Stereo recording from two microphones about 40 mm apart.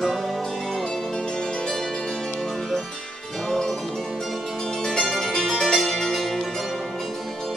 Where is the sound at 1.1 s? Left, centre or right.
Centre.